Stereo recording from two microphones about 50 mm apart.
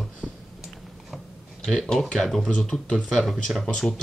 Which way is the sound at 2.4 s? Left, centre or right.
Centre.